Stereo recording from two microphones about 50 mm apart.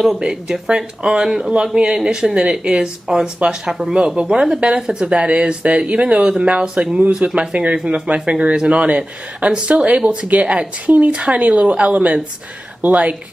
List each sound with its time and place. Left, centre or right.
0.2 s speech: centre